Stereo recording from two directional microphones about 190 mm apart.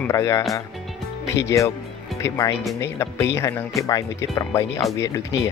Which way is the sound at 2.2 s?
15° left (ahead or behind).